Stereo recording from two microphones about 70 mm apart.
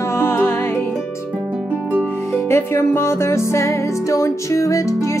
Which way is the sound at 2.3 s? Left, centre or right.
Left.